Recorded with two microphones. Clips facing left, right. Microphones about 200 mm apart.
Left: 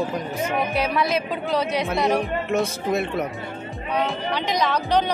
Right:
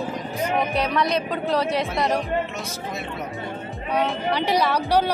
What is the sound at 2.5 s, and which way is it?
Speech, 55° left (ahead or behind).